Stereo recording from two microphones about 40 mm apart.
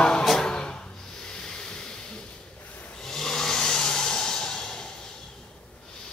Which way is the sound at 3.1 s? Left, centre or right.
Centre.